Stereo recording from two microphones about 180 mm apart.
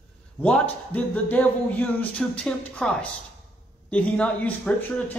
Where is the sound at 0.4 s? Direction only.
5° left (ahead or behind).